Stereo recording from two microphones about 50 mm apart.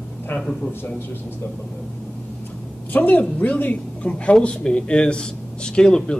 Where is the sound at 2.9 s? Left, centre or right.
Left.